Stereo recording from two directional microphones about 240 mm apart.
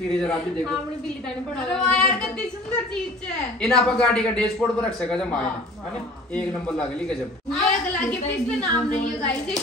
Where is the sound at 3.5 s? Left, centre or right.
Centre.